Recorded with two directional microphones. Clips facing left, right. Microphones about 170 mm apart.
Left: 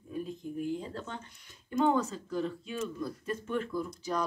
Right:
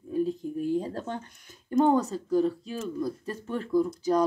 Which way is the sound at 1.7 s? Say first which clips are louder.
Right 5 dB; 40° right (ahead or behind).